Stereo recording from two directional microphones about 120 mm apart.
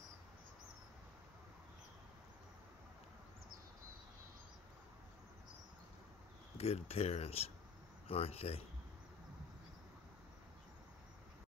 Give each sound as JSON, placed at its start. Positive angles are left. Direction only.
{"t": 6.6, "sound": "speech", "side_deg": 60}